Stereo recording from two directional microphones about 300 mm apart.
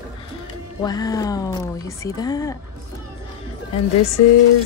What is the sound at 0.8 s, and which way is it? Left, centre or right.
Speech, centre.